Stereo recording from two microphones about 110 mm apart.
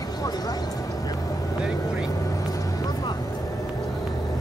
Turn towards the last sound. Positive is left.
turn(degrees=30)  # may be behind; listen again after turning